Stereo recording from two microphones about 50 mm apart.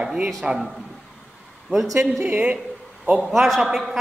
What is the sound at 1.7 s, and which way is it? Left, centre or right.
Speech, right.